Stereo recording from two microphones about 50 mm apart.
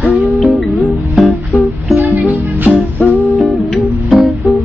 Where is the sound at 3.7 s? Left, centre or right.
Centre.